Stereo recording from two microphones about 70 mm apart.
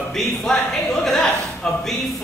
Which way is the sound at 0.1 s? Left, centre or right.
Centre.